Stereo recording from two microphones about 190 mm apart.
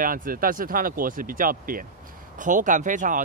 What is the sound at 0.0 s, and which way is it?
Speech, 45° right (ahead or behind).